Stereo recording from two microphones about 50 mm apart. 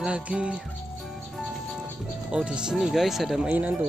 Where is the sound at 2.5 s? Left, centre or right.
Centre.